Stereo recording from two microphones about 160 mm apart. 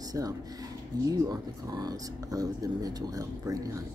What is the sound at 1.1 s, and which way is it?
Speech, 25° right (ahead or behind).